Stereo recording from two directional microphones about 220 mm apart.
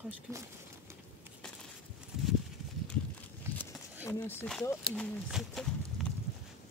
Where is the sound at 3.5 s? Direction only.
10° right (ahead or behind).